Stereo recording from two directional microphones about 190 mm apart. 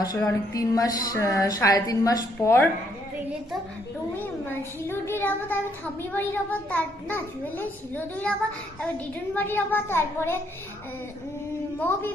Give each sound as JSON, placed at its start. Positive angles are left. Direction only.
{"t": 0.0, "sound": "a woman's voice", "side_deg": 20}
{"t": 4.5, "sound": "a woman's voice", "side_deg": 10}